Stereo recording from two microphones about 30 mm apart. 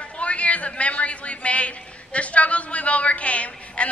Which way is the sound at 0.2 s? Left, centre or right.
Left.